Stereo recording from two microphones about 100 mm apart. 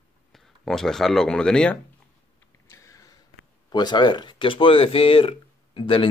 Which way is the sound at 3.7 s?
45° left (ahead or behind).